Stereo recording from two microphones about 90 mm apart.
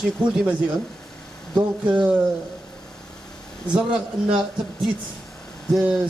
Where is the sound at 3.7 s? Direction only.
10° right (ahead or behind).